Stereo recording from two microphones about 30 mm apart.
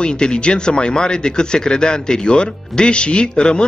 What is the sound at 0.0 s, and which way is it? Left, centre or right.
Speech, left.